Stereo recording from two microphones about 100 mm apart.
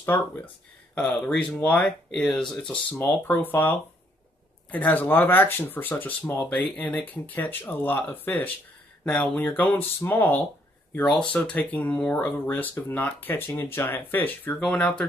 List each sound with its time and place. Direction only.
0.9 s speech: 15° left (ahead or behind)
11.1 s speech: 5° left (ahead or behind)